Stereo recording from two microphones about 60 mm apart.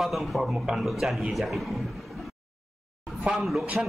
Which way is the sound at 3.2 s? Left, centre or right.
Centre.